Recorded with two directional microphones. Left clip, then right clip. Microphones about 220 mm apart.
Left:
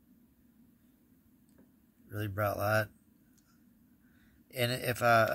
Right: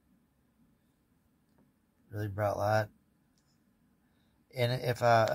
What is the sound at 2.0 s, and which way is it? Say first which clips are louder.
Speech: right 1 dB; 10° left (ahead or behind).